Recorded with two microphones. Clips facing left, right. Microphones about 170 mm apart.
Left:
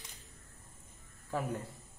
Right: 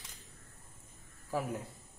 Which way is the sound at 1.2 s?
5° right (ahead or behind).